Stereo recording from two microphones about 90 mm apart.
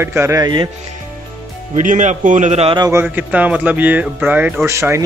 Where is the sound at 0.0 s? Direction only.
30° right (ahead or behind).